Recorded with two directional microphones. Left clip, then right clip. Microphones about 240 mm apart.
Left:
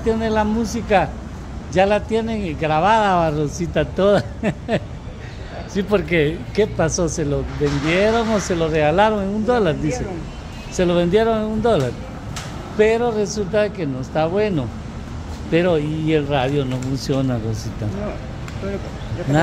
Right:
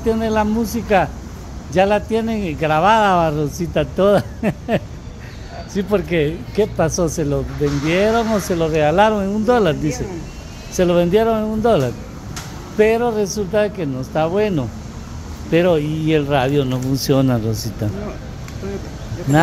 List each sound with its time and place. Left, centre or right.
0.0 s a man's voice: right
10.8 s a man's voice: centre; by 17.6 s right